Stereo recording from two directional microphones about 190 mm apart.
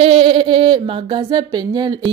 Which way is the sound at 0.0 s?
30° right (ahead or behind).